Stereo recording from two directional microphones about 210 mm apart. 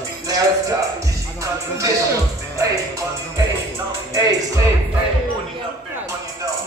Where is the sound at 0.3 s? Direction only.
15° right (ahead or behind).